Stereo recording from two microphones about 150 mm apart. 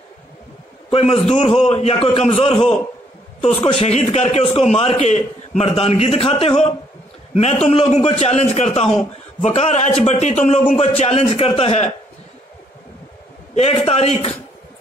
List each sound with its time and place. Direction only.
0.8 s a man's voice: 40° left (ahead or behind)
13.6 s a man's voice: 40° left (ahead or behind)